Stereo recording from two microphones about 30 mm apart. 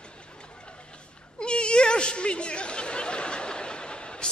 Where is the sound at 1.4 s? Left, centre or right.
Left.